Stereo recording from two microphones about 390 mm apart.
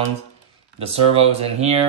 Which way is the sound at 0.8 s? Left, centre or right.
Centre.